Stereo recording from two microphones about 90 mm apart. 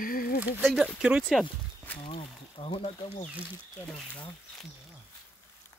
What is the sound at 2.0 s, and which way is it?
Speech, 75° left (ahead or behind).